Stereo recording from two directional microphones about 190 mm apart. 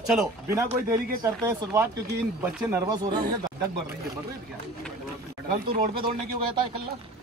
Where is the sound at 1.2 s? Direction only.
20° right (ahead or behind).